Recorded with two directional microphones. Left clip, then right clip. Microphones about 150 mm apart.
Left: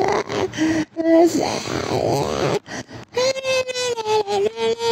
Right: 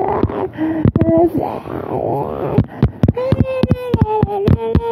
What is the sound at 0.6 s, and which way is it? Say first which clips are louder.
Gasp: right 3 dB; 15° left (ahead or behind).